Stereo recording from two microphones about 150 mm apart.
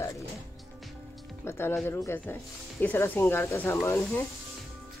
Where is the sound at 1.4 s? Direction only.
15° left (ahead or behind).